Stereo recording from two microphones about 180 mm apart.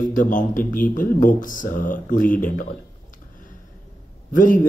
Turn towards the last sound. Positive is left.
turn(degrees=50)  # may be behind; listen again after turning